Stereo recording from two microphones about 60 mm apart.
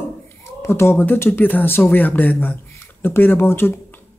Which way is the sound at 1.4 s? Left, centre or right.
Left.